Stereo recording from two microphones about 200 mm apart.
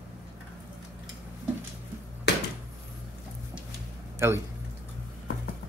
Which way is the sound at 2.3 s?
55° left (ahead or behind).